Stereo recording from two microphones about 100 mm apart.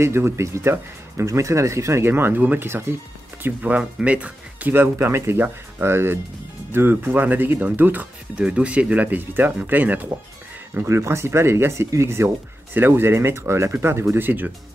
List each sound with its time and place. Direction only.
0.0 s speech: 25° right (ahead or behind)